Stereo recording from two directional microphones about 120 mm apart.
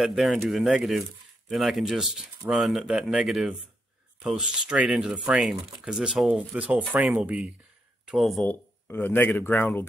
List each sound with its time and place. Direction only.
0.0 s speech: centre (ahead or behind)
8.5 s speech: 15° left (ahead or behind)